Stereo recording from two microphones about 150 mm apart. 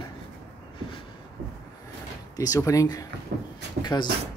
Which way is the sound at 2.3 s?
25° left (ahead or behind).